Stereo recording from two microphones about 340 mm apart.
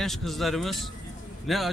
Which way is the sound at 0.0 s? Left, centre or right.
Centre.